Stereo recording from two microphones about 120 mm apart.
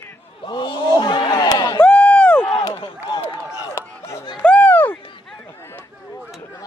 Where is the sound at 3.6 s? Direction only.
25° left (ahead or behind).